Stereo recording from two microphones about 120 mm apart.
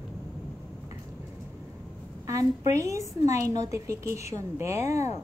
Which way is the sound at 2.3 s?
25° right (ahead or behind).